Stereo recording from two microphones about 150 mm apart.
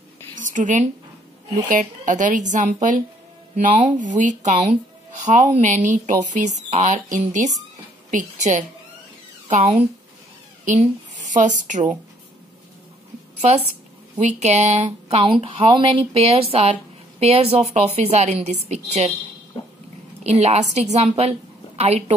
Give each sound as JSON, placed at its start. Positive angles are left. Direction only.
{"t": 0.4, "sound": "a woman's voice", "side_deg": -60}
{"t": 14.1, "sound": "speech", "side_deg": -50}
{"t": 19.6, "sound": "dog", "side_deg": 35}
{"t": 20.2, "sound": "speech", "side_deg": -45}